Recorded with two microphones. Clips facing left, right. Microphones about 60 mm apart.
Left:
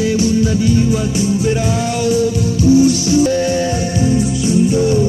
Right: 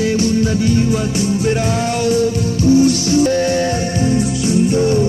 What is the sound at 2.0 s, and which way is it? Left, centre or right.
Music, right.